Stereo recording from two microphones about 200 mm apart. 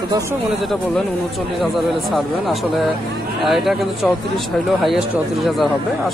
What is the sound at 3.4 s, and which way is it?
Speech, centre (ahead or behind).